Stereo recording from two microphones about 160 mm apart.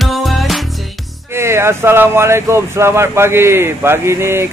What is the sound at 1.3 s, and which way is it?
A man's voice, 15° right (ahead or behind).